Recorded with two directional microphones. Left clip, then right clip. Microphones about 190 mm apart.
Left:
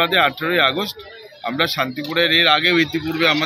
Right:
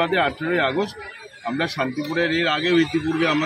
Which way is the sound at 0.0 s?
15° left (ahead or behind).